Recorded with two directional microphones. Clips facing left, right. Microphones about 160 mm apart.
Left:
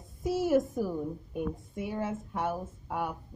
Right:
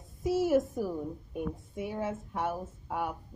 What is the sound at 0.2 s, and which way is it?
Speech, 5° right (ahead or behind).